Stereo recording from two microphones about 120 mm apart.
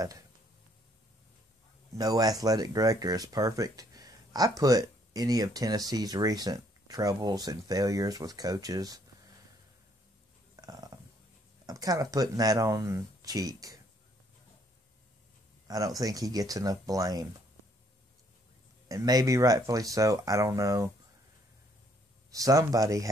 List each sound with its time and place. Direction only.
2.0 s speech: 30° right (ahead or behind)
10.5 s a sound: 30° right (ahead or behind)
11.6 s speech: 30° right (ahead or behind)
15.6 s a sound: 30° right (ahead or behind)
16.0 s speech: 30° right (ahead or behind)
18.9 s speech: 30° right (ahead or behind)
22.3 s speech: 30° right (ahead or behind)